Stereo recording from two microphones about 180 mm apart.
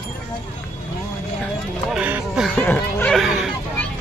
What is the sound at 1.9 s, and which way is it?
Speech, 5° right (ahead or behind).